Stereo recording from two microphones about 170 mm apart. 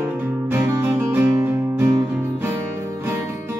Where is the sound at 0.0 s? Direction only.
10° right (ahead or behind).